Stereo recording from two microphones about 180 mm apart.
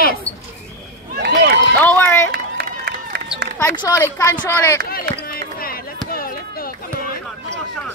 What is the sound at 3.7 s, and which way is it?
A woman's voice, 20° left (ahead or behind).